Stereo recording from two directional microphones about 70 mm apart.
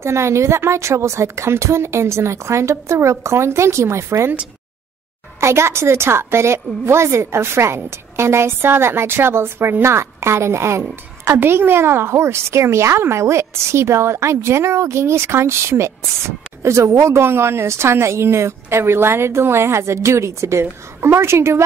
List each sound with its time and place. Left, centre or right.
0.0 s a woman's voice: right
5.4 s a woman's voice: right